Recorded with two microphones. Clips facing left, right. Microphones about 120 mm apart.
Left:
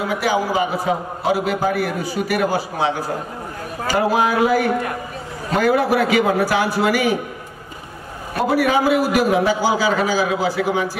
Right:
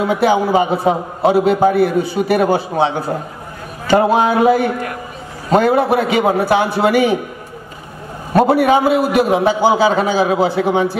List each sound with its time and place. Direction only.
0.0 s a man's voice: 25° right (ahead or behind)
4.1 s a man's voice: 25° right (ahead or behind)
8.5 s a man's voice: 25° right (ahead or behind)